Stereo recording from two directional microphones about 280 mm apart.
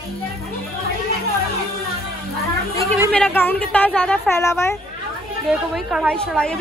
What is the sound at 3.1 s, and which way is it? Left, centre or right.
A woman's voice, centre.